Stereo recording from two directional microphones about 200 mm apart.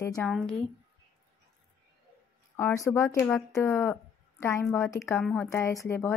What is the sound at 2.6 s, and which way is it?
A woman's voice, 15° left (ahead or behind).